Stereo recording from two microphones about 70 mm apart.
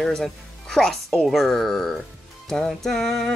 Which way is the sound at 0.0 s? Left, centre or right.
Centre.